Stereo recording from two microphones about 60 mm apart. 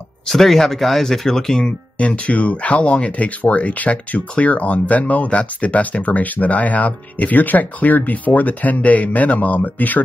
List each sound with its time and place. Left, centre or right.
0.3 s speech: centre
2.0 s speech: left